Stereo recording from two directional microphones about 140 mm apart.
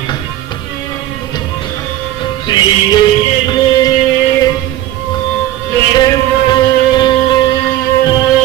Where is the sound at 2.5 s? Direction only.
30° left (ahead or behind).